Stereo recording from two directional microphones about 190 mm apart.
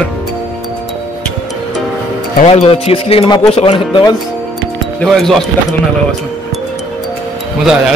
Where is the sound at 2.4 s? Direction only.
35° left (ahead or behind).